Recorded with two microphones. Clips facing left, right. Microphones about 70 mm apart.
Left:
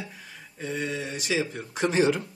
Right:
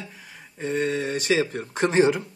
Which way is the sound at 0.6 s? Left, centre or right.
Right.